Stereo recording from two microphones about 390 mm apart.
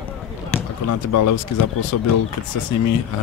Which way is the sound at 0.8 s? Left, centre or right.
Left.